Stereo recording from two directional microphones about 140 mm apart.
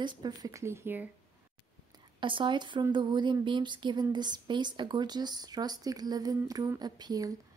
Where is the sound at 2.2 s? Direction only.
35° right (ahead or behind).